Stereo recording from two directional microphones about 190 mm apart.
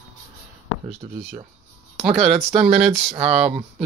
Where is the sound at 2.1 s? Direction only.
35° right (ahead or behind).